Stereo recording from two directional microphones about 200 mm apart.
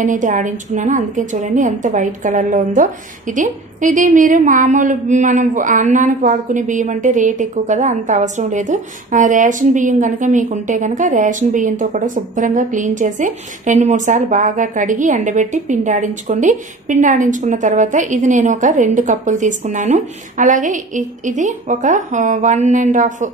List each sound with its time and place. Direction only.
0.0 s a woman's voice: 40° right (ahead or behind)